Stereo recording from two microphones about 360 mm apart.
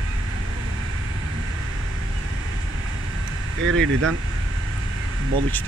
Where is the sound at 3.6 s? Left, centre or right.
Right.